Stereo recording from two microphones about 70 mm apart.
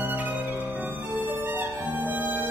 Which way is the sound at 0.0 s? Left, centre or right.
Right.